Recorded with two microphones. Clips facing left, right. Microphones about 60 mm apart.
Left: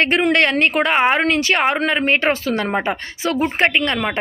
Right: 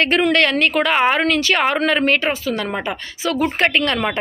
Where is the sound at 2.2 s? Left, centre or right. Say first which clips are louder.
Left 2 dB; left.